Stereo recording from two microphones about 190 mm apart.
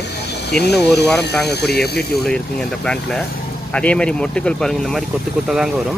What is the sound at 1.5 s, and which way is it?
Speech, 60° left (ahead or behind).